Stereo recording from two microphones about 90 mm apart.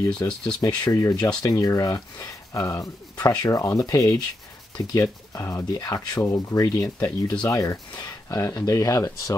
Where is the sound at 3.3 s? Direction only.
50° left (ahead or behind).